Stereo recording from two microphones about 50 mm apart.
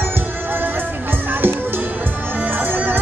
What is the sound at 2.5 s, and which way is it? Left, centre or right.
Music, right.